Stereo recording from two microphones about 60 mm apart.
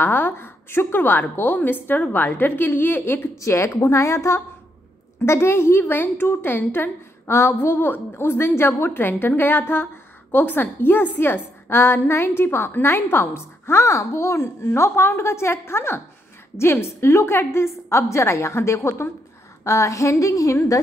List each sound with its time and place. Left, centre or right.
0.0 s a woman's voice: left
3.3 s a woman's voice: left
19.6 s a woman's voice: left